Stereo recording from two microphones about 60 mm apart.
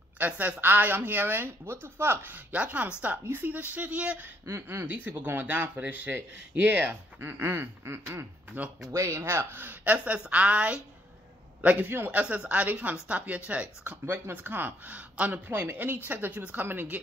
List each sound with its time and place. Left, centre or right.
0.2 s speech: right
2.5 s speech: right
4.5 s a sound: right
4.8 s speech: right
7.6 s a sound: right
8.9 s speech: right
12.1 s speech: right
14.0 s speech: right